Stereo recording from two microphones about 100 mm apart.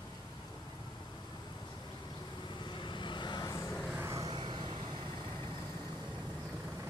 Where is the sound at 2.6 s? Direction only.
50° left (ahead or behind).